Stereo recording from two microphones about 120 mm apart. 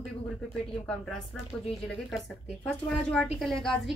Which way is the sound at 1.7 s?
Centre (ahead or behind).